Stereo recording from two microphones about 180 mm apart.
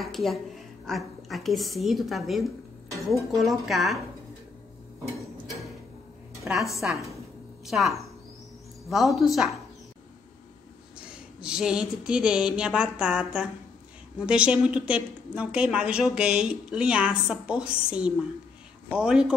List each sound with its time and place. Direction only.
0.0 s a woman's voice: centre (ahead or behind)
6.4 s a woman's voice: centre (ahead or behind)
11.1 s speech: 5° right (ahead or behind)